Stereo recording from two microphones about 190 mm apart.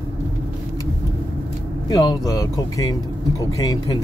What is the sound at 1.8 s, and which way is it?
Speech, 20° left (ahead or behind).